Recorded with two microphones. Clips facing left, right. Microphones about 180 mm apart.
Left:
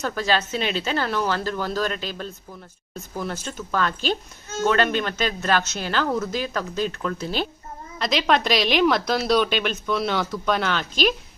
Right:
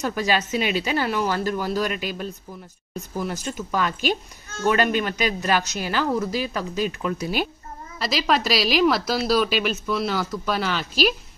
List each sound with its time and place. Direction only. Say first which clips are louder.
0.0 s a woman's voice: even; 15° right (ahead or behind)